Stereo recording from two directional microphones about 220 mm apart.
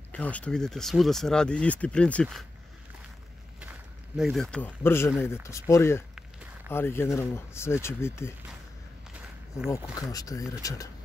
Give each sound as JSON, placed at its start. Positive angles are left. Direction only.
{"t": 0.1, "sound": "speech", "side_deg": 5}
{"t": 4.2, "sound": "speech", "side_deg": 0}
{"t": 10.1, "sound": "speech", "side_deg": 15}